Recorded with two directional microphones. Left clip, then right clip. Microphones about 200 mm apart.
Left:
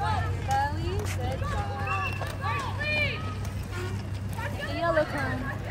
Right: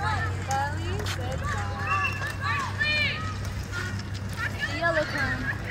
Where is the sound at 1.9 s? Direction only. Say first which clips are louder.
Right 6 dB; 50° left (ahead or behind).